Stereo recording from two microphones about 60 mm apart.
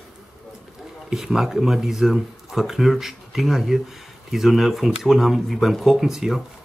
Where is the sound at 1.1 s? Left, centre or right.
Centre.